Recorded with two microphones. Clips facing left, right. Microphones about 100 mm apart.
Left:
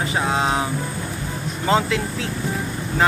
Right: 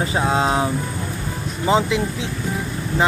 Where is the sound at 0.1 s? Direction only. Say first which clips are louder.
Right 1 dB; 30° right (ahead or behind).